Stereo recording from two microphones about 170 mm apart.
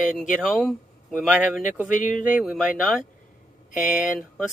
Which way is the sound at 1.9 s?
50° left (ahead or behind).